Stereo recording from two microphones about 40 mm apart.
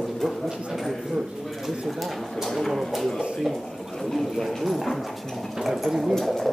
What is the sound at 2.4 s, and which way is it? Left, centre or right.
Speech, centre.